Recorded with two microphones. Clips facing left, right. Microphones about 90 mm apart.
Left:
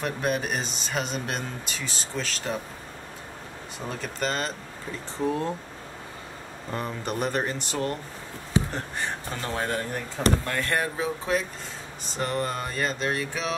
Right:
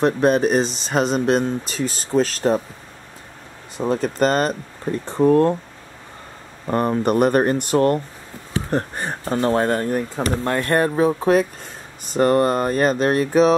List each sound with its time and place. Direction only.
0.0 s speech: 35° right (ahead or behind)
3.8 s speech: 40° right (ahead or behind); by 5.5 s 55° right (ahead or behind)
6.7 s speech: 55° right (ahead or behind)